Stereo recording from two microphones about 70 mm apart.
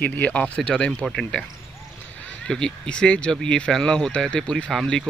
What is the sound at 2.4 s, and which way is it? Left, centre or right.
Speech, centre.